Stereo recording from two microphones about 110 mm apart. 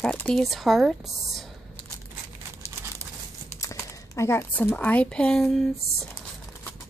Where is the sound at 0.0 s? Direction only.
10° left (ahead or behind).